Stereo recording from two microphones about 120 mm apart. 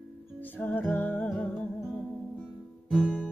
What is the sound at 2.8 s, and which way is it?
Music, centre (ahead or behind).